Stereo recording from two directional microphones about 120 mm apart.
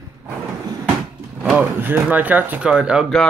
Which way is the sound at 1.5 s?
15° right (ahead or behind).